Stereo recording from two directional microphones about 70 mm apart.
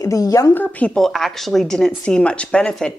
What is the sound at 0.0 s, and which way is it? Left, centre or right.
Speech, left.